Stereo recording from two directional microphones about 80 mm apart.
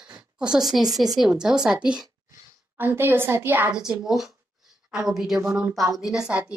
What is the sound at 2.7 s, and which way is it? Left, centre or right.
Speech, right.